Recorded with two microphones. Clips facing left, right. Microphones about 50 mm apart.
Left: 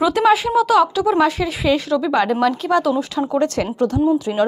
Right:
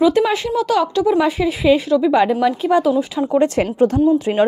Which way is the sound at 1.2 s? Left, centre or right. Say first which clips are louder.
Right 2 dB; centre.